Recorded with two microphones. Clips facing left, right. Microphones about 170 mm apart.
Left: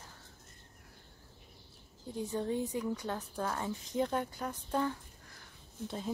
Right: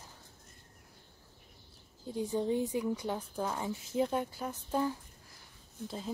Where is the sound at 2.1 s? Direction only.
15° right (ahead or behind).